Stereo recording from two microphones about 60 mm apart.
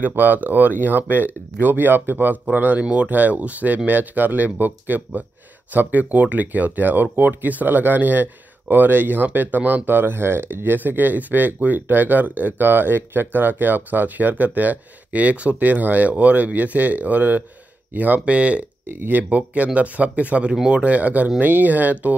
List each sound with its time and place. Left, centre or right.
0.1 s speech: right
18.9 s speech: right
19.2 s speech: right